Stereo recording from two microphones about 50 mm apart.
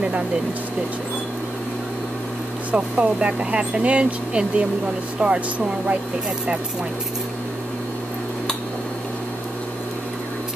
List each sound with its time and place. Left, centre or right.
2.7 s speech: right